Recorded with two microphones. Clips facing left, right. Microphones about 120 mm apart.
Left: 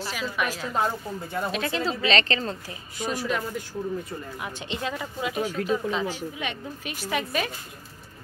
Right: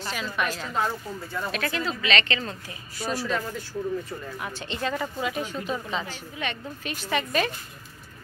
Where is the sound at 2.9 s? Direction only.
15° left (ahead or behind).